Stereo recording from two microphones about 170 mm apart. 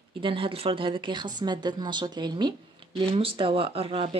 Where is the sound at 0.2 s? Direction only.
30° right (ahead or behind).